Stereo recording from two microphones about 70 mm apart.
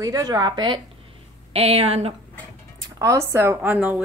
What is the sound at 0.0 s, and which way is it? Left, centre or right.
Speech, right.